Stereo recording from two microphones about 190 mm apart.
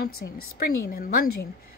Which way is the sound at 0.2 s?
60° left (ahead or behind).